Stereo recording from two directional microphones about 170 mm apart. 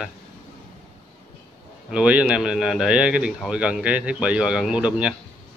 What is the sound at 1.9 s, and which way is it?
A man's voice, 5° right (ahead or behind).